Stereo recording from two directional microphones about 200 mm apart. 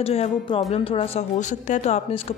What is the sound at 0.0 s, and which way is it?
Speech, 30° left (ahead or behind).